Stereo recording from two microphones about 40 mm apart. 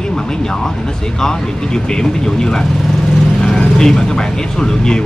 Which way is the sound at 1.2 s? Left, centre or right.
Centre.